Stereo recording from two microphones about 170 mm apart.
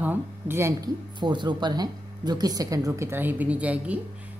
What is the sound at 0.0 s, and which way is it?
Speech, 10° right (ahead or behind).